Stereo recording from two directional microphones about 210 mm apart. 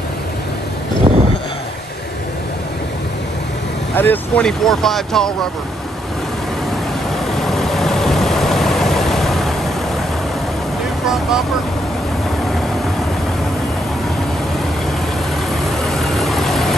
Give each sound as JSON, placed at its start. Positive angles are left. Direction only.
{"t": 1.1, "sound": "vehicle", "side_deg": -25}
{"t": 3.9, "sound": "speech", "side_deg": 10}
{"t": 7.4, "sound": "vehicle", "side_deg": 0}
{"t": 15.8, "sound": "vehicle", "side_deg": 0}